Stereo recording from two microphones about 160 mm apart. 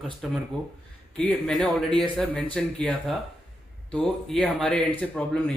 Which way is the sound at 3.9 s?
5° left (ahead or behind).